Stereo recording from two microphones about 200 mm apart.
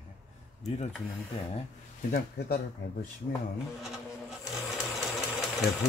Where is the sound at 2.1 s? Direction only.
50° left (ahead or behind).